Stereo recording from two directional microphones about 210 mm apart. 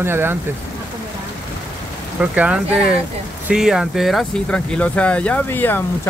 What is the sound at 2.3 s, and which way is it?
Speech, 5° right (ahead or behind).